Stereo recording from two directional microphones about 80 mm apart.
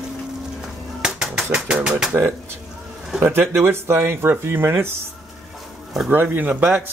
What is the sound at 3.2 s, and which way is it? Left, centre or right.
Speech, right.